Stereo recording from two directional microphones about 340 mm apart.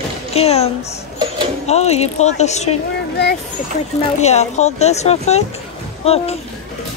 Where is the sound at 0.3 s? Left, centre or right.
Centre.